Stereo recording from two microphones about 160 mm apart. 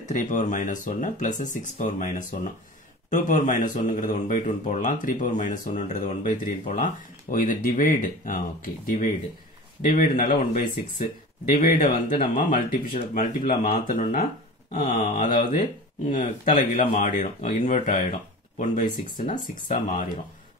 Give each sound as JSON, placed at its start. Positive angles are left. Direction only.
{"t": 0.0, "sound": "speech", "side_deg": 50}
{"t": 11.4, "sound": "speech", "side_deg": 65}